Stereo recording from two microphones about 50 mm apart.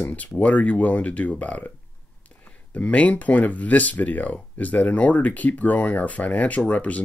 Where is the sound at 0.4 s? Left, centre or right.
Left.